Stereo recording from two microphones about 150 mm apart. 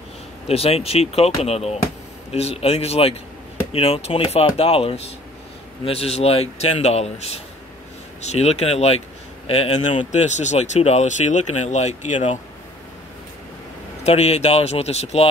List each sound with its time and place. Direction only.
0.5 s speech: 40° left (ahead or behind)
14.0 s speech: 45° left (ahead or behind)